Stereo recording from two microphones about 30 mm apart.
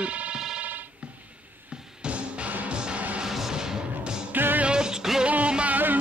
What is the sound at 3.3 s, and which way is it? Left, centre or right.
Music, centre.